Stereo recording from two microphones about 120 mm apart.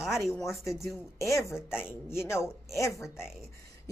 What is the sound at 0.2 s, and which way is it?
Speech, 25° left (ahead or behind).